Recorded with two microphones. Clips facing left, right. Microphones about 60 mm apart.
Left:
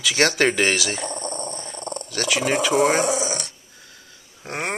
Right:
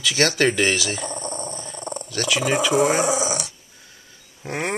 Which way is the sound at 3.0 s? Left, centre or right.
Centre.